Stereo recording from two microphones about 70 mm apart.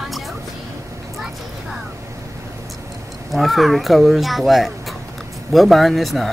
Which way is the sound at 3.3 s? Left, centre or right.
Centre.